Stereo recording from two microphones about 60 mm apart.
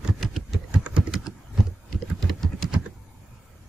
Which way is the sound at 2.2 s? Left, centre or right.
Centre.